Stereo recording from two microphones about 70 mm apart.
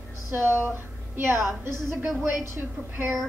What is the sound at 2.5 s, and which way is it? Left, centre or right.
Speech, right.